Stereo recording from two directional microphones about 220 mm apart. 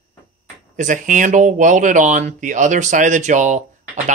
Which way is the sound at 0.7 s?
35° right (ahead or behind).